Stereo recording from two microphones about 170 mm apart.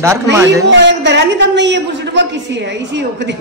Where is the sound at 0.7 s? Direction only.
90° right.